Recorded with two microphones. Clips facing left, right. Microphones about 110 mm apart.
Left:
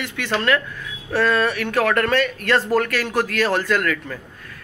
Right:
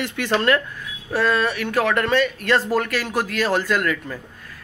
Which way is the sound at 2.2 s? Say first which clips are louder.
Even; 30° right (ahead or behind).